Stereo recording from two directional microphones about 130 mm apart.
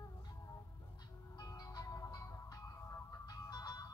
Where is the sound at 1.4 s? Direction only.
30° left (ahead or behind).